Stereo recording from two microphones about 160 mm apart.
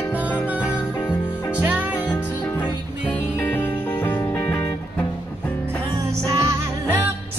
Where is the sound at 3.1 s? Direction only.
10° left (ahead or behind).